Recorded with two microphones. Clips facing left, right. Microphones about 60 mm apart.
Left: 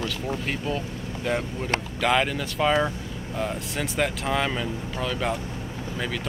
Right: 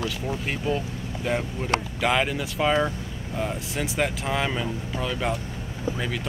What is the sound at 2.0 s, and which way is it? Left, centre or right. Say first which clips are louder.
Speech: left 2 dB; centre.